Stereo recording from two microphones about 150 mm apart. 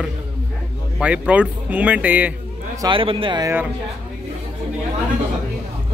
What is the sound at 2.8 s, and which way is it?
Speech, 35° right (ahead or behind).